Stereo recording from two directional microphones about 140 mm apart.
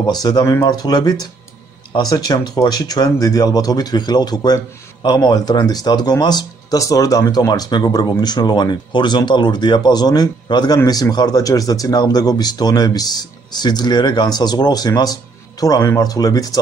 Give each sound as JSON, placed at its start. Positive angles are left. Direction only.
{"t": 0.0, "sound": "speech", "side_deg": 30}